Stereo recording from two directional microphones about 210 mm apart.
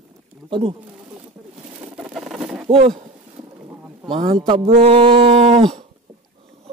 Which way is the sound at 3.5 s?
10° right (ahead or behind).